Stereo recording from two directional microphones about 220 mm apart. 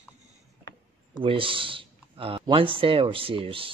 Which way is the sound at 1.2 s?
25° right (ahead or behind).